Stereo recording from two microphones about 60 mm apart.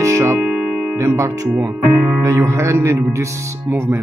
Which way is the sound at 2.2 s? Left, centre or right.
Right.